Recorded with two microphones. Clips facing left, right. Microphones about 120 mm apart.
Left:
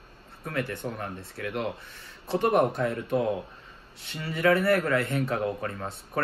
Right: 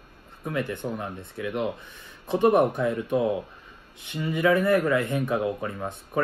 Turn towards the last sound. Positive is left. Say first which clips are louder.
# right 2 dB
turn(degrees=-15)  # may be behind; listen again after turning